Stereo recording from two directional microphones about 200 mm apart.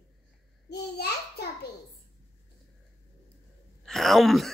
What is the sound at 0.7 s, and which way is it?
Speech, 55° left (ahead or behind).